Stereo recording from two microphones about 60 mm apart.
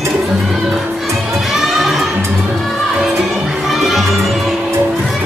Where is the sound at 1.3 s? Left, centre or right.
Centre.